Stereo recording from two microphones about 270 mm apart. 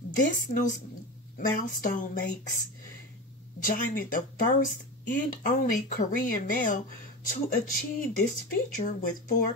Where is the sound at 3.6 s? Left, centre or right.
Left.